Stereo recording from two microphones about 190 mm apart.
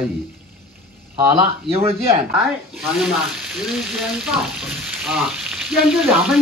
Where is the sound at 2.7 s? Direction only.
Centre (ahead or behind).